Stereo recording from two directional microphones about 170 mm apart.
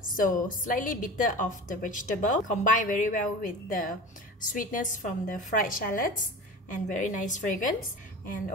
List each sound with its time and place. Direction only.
0.0 s a woman's voice: 55° left (ahead or behind)